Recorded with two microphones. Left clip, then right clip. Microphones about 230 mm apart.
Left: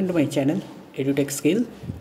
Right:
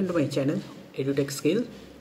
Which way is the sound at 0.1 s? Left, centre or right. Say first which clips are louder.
Left 5 dB; centre.